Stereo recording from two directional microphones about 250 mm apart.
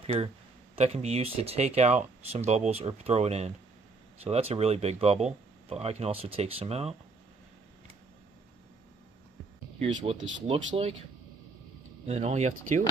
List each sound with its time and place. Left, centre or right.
0.0 s speech: right
9.8 s speech: right
12.1 s speech: right